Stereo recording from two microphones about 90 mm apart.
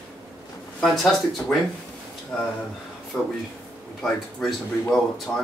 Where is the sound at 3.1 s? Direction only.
20° left (ahead or behind).